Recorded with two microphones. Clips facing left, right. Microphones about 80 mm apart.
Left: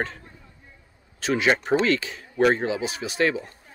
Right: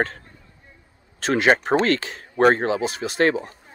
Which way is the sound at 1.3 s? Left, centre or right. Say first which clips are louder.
Right 3 dB; right.